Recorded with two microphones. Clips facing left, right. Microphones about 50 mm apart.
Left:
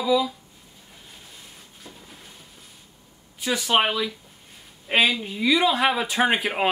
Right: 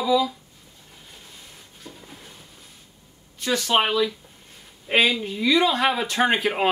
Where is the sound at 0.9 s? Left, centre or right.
Centre.